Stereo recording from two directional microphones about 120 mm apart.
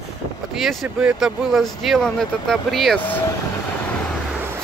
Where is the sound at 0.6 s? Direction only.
Centre (ahead or behind).